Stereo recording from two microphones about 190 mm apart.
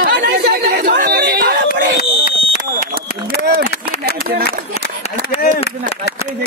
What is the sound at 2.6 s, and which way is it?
Speech, 50° right (ahead or behind).